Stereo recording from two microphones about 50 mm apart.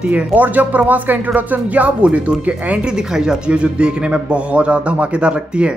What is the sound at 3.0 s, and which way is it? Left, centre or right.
A man's voice, centre.